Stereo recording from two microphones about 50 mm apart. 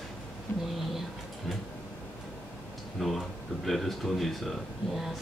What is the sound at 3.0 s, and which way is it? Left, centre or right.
Speech, centre.